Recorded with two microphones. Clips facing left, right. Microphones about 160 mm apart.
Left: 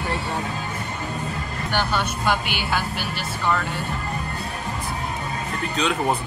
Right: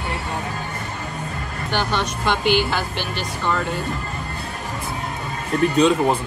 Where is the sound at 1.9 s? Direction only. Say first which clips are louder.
Right 1 dB; 5° left (ahead or behind).